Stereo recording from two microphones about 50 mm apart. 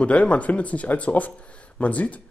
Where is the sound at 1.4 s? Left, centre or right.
Left.